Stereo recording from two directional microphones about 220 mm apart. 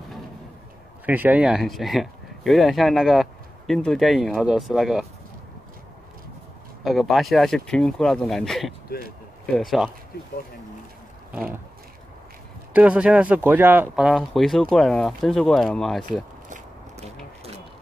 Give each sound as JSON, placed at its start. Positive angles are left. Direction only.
{"t": 1.0, "sound": "speech", "side_deg": -10}
{"t": 6.8, "sound": "speech", "side_deg": 0}
{"t": 10.1, "sound": "speech", "side_deg": 45}
{"t": 12.7, "sound": "speech", "side_deg": -5}